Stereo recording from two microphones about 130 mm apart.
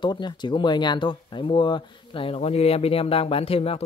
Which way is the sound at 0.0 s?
35° left (ahead or behind).